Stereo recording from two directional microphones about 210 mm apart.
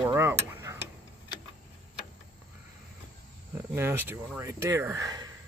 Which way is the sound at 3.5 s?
10° right (ahead or behind).